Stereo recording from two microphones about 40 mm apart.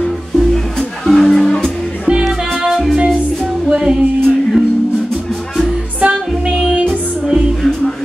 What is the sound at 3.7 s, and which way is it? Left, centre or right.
Music, right.